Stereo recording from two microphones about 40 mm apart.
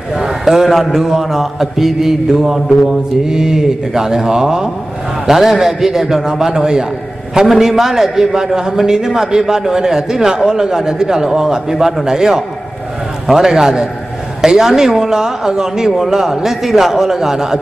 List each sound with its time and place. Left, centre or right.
0.1 s a man's voice: centre